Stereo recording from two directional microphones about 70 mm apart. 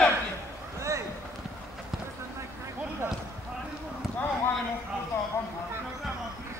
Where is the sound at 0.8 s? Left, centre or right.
Right.